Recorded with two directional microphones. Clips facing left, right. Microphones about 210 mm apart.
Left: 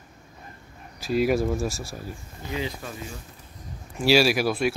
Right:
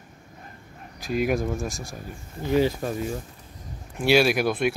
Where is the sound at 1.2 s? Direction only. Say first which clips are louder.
Left 2 dB; 5° left (ahead or behind).